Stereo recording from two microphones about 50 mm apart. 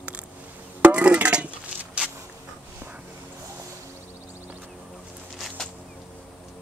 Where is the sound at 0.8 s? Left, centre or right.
Right.